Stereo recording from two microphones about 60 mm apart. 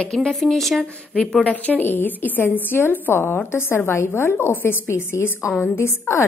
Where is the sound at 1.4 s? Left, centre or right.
Left.